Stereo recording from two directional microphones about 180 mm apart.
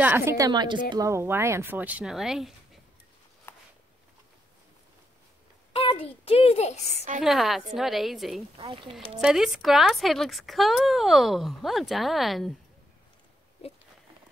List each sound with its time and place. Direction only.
0.0 s speech: 15° right (ahead or behind)
0.5 s speech: 25° right (ahead or behind); by 2.8 s centre (ahead or behind)
3.5 s a sound: 15° left (ahead or behind)
5.7 s a child's voice: 30° left (ahead or behind)
7.2 s speech: centre (ahead or behind)
8.5 s speech: 25° right (ahead or behind)
9.2 s speech: centre (ahead or behind)